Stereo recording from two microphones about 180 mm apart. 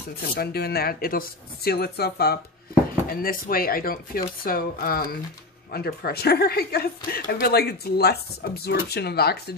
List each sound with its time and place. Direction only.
0.4 s speech: 60° left (ahead or behind)